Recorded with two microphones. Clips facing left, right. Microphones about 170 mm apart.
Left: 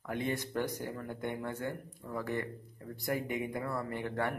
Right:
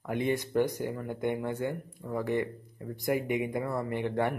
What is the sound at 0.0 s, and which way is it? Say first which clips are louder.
Speech: right 5 dB; 15° right (ahead or behind).